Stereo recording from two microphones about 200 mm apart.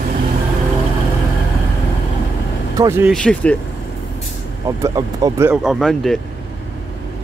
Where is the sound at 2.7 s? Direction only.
20° right (ahead or behind).